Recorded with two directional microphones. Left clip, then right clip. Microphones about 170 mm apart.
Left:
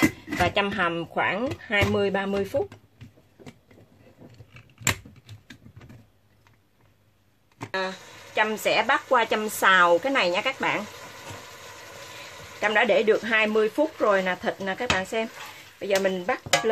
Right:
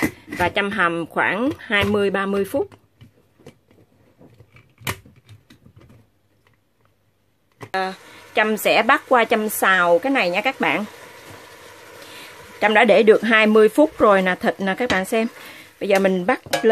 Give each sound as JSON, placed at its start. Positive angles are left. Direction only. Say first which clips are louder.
{"t": 0.2, "sound": "speech", "louder": "right 3 dB", "side_deg": -30}
{"t": 7.7, "sound": "speech", "louder": "right 5 dB", "side_deg": -55}
{"t": 11.5, "sound": "vehicle", "louder": "right 1 dB", "side_deg": -10}
{"t": 12.5, "sound": "speech", "louder": "right 7 dB", "side_deg": -60}